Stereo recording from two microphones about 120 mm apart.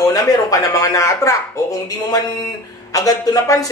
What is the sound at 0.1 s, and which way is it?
Speech, 30° left (ahead or behind).